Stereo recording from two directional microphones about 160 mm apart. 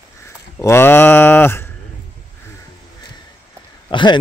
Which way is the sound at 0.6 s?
15° left (ahead or behind).